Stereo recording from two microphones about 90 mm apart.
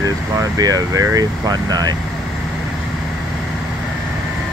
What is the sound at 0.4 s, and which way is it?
Speech, 45° right (ahead or behind).